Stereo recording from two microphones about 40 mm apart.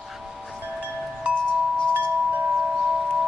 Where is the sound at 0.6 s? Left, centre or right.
Right.